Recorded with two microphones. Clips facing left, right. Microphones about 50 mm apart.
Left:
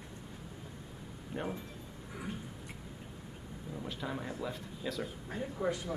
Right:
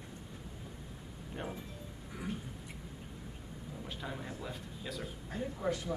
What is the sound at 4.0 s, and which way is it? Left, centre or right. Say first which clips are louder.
A man's voice: left 4 dB; centre.